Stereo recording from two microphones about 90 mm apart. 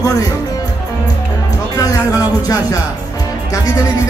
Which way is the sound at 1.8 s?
40° left (ahead or behind).